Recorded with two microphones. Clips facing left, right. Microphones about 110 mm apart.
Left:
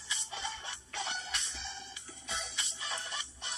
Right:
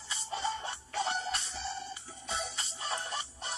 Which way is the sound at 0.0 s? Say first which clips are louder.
Right 6 dB; 40° right (ahead or behind).